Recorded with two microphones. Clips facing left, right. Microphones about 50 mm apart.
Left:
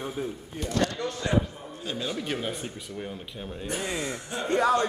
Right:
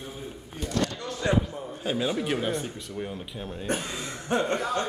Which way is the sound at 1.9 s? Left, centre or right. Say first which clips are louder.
Right 4 dB; centre.